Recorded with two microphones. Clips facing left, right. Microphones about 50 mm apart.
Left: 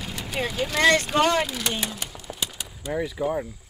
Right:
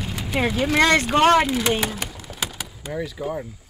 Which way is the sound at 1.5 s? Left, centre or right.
Right.